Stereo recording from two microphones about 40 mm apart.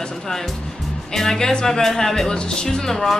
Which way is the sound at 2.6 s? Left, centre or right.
Centre.